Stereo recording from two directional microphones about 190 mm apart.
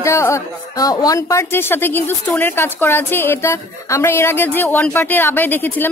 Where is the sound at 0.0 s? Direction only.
15° left (ahead or behind).